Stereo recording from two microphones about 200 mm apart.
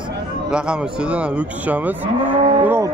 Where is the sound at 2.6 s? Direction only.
15° right (ahead or behind).